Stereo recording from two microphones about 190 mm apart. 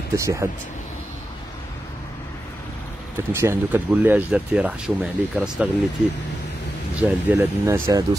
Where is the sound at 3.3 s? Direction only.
10° right (ahead or behind).